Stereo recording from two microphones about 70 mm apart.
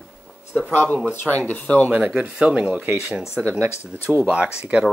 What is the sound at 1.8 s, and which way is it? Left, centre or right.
Speech, right.